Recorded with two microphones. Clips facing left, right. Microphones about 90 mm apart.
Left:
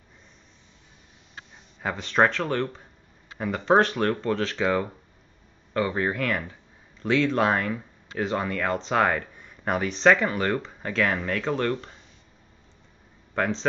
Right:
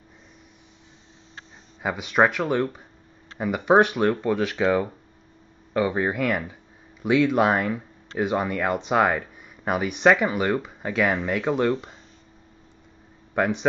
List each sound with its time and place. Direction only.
1.8 s speech: 10° right (ahead or behind)
13.3 s speech: 15° right (ahead or behind)